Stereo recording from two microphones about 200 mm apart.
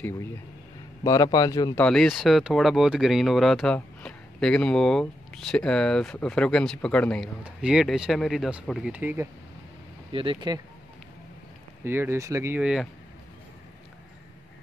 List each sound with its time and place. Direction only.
1.0 s speech: 15° left (ahead or behind)
1.9 s speech: centre (ahead or behind)
10.1 s speech: 25° right (ahead or behind)
11.8 s speech: 10° right (ahead or behind)